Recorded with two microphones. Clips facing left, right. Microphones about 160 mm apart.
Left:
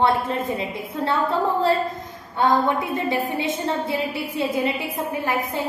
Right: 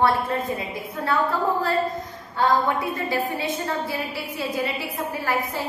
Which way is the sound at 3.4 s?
25° left (ahead or behind).